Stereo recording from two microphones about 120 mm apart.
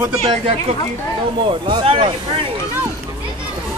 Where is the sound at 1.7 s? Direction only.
50° right (ahead or behind).